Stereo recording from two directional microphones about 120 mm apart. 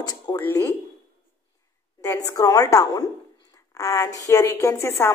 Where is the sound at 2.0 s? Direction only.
25° left (ahead or behind).